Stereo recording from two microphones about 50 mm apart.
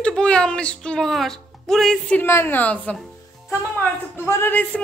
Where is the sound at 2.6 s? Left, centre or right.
Left.